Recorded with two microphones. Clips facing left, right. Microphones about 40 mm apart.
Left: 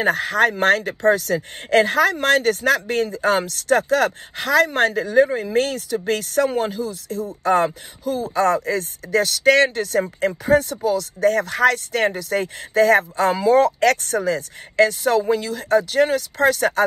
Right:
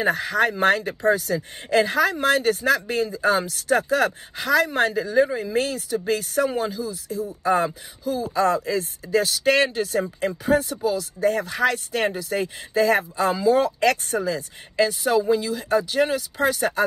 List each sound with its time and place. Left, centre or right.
0.0 s speech: left
6.0 s speech: left
6.5 s speech: left
16.1 s speech: left